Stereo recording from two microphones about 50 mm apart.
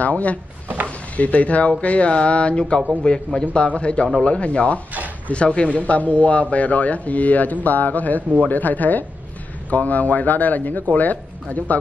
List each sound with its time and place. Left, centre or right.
0.0 s speech: left